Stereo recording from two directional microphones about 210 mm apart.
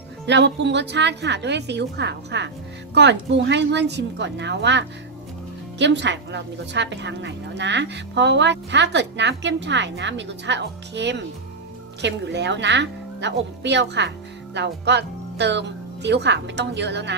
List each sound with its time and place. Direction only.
0.3 s a woman's voice: 55° right (ahead or behind)